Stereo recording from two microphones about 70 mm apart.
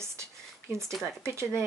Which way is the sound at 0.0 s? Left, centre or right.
Right.